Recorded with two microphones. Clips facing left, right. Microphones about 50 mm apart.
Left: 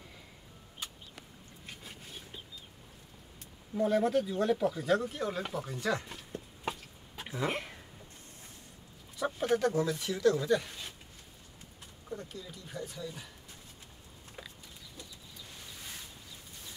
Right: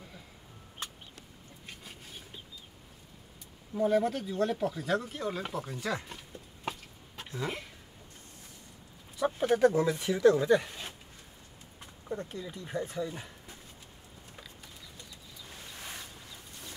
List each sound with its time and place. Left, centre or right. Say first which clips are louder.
3.7 s speech: even; centre
9.2 s bird: right 2 dB; centre
9.6 s speech: right 5 dB; right
12.1 s speech: right 5 dB; right